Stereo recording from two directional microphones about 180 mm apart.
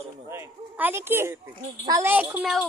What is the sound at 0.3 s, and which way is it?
A woman's voice, 10° right (ahead or behind).